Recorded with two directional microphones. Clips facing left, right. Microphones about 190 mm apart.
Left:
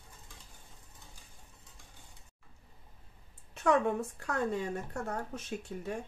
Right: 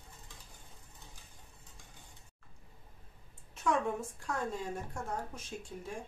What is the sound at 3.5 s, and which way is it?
Speech, 65° left (ahead or behind).